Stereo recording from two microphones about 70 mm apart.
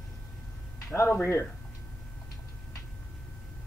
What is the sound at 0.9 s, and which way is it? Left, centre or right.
Speech, left.